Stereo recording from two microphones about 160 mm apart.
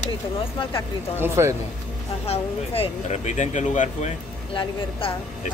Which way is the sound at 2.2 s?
40° left (ahead or behind).